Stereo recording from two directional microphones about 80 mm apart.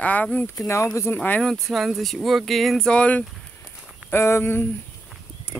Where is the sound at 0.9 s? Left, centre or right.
Left.